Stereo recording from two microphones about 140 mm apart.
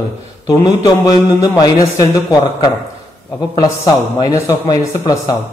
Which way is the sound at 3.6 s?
25° left (ahead or behind).